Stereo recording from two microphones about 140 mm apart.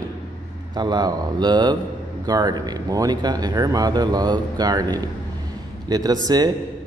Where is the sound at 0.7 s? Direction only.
30° right (ahead or behind).